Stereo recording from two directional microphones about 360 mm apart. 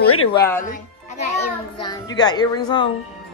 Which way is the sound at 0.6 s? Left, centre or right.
Left.